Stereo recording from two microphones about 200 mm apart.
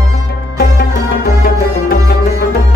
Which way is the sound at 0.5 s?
50° left (ahead or behind).